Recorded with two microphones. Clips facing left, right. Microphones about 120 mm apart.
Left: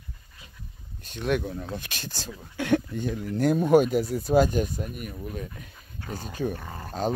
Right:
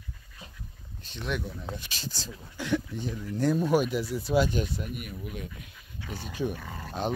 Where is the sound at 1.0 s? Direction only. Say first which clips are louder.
Left 7 dB; 55° left (ahead or behind).